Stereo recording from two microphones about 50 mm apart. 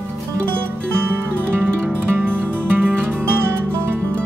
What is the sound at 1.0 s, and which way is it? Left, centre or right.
Music, right.